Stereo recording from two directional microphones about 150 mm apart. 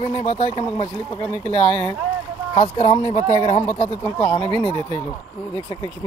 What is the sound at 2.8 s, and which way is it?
Speech, 45° left (ahead or behind).